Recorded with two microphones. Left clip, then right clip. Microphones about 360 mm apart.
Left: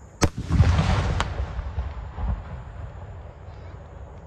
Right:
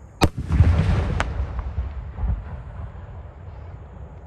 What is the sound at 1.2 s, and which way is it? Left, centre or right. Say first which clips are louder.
Artillery fire: right 2 dB; right.